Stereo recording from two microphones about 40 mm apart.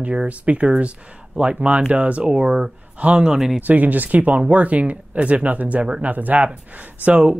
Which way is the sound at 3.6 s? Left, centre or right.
Right.